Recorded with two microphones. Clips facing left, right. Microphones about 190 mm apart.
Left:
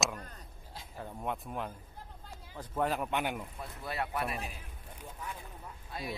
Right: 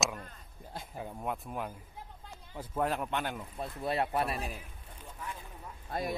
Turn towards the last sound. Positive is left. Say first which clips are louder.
# right 5 dB
turn(degrees=-45)  # may be behind; listen again after turning